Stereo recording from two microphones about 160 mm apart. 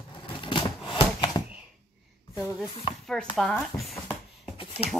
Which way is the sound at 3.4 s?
Centre (ahead or behind).